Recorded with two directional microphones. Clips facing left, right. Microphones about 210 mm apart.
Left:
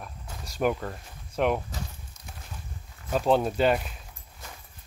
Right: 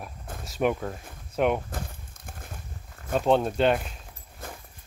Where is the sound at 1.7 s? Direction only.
55° right (ahead or behind).